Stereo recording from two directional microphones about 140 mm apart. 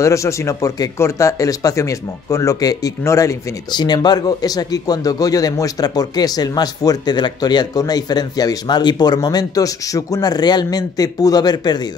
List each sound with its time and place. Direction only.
0.0 s speech: 20° left (ahead or behind)